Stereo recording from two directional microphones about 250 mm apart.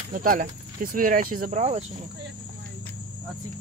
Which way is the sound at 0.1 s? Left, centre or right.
Right.